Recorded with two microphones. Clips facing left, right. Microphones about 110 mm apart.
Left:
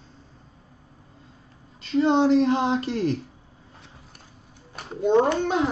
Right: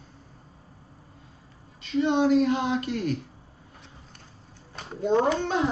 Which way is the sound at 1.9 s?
30° left (ahead or behind).